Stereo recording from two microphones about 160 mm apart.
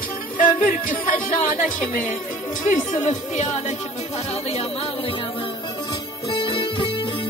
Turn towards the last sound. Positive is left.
turn(degrees=30)  # may be behind; listen again after turning